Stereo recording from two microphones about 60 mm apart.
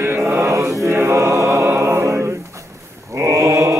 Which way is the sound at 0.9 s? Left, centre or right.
Right.